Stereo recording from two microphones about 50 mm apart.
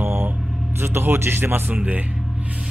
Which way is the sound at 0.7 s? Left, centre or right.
Right.